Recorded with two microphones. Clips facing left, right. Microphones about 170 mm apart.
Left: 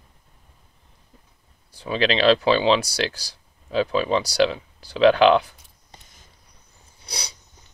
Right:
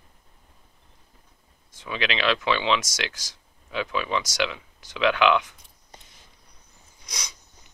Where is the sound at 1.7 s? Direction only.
35° left (ahead or behind).